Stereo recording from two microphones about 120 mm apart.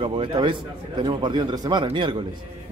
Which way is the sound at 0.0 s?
45° right (ahead or behind).